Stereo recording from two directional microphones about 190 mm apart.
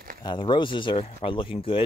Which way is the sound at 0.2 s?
25° left (ahead or behind).